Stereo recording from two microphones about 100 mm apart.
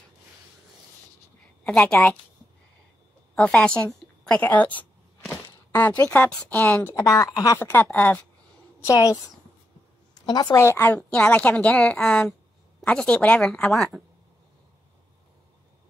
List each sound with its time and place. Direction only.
1.6 s a woman's voice: 10° left (ahead or behind)
3.3 s a woman's voice: 10° left (ahead or behind)
5.3 s a sound: 20° left (ahead or behind)
6.0 s speech: 15° left (ahead or behind); by 7.5 s 35° left (ahead or behind)
7.5 s speech: 20° left (ahead or behind)
8.8 s a woman's voice: 30° left (ahead or behind)
10.2 s a woman's voice: 40° left (ahead or behind); by 14.0 s centre (ahead or behind)